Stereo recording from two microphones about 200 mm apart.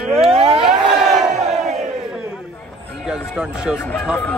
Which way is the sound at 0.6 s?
Centre (ahead or behind).